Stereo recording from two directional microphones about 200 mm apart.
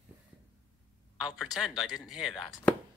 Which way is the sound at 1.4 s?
Centre (ahead or behind).